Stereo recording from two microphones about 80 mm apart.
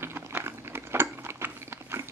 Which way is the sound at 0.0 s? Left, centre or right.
Right.